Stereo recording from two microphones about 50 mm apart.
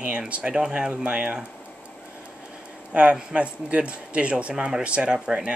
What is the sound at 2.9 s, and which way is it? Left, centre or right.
A man's voice, right.